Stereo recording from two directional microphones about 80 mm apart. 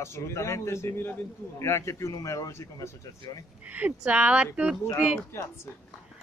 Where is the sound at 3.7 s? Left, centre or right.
Centre.